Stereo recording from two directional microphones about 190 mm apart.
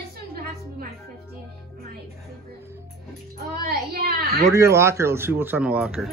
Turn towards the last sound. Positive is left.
turn(degrees=-5)  # may be behind; listen again after turning